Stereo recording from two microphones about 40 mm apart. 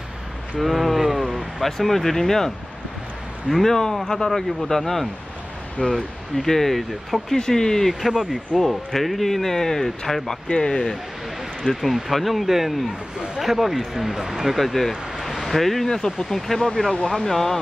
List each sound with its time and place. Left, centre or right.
0.6 s a sound: centre
1.3 s speech: centre
3.7 s speech: centre
6.9 s speech: centre
7.3 s speech: centre
8.1 s speech: centre
8.5 s speech: centre
10.5 s speech: left
11.6 s speech: centre
14.6 s speech: centre
15.1 s a sound: centre
16.2 s speech: centre